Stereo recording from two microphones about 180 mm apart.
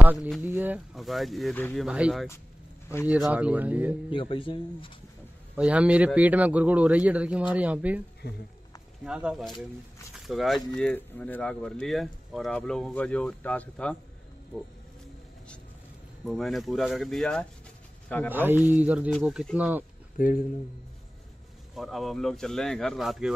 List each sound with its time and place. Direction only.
0.0 s a man's voice: 10° right (ahead or behind); by 1.9 s 5° left (ahead or behind)
1.9 s a man's voice: 5° right (ahead or behind)
4.1 s speech: 30° left (ahead or behind)
5.6 s a man's voice: 5° right (ahead or behind)
8.2 s speech: 60° left (ahead or behind)
9.0 s speech: 5° right (ahead or behind)
16.3 s speech: centre (ahead or behind)
18.3 s a man's voice: 10° right (ahead or behind)
20.2 s speech: 50° left (ahead or behind)
21.7 s speech: centre (ahead or behind)